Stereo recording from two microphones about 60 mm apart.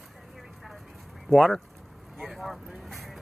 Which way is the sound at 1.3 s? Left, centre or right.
Centre.